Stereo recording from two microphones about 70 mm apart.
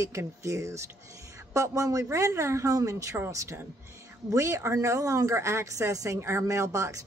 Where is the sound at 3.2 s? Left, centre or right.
Right.